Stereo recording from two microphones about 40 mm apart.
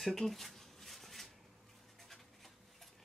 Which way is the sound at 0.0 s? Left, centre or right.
Centre.